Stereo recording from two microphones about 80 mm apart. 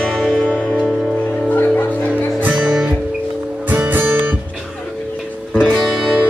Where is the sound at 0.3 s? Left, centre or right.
Centre.